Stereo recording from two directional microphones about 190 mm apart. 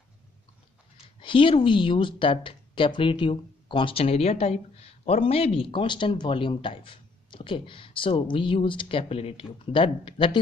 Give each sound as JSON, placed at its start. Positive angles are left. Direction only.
{"t": 1.2, "sound": "a woman's voice", "side_deg": 25}